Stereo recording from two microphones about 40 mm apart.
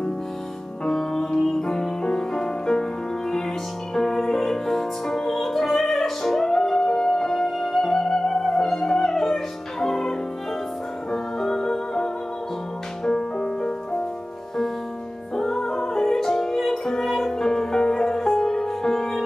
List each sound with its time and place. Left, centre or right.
0.8 s music: centre
8.0 s theremin: centre
8.8 s music: centre
15.3 s music: centre